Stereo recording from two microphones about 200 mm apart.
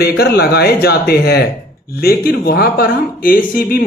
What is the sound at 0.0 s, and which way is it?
Speech, 50° left (ahead or behind).